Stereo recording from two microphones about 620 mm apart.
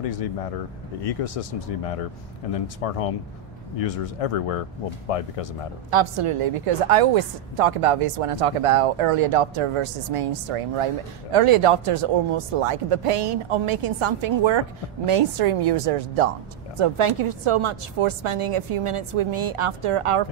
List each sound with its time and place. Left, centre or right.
0.0 s speech: left
5.9 s a woman's voice: right
16.7 s a woman's voice: right